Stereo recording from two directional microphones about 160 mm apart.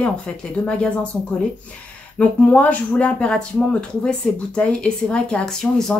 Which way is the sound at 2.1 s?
10° left (ahead or behind).